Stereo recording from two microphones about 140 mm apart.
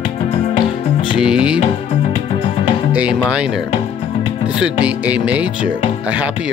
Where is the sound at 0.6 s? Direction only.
35° left (ahead or behind).